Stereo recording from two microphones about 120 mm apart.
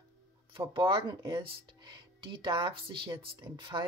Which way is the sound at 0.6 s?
45° right (ahead or behind).